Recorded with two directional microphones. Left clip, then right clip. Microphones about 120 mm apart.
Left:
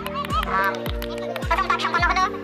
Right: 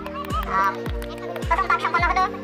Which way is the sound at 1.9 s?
45° left (ahead or behind).